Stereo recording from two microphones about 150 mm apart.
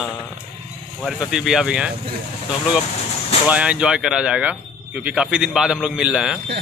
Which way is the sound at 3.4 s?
10° right (ahead or behind).